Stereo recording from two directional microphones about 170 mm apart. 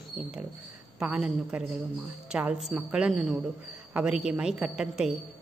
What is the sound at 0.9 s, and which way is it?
Speech, 5° right (ahead or behind).